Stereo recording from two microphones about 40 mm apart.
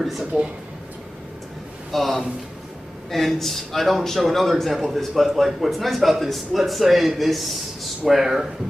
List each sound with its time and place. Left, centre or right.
0.0 s a man's voice: centre
1.9 s a man's voice: centre